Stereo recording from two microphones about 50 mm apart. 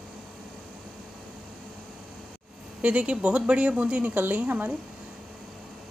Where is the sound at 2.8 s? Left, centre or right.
Right.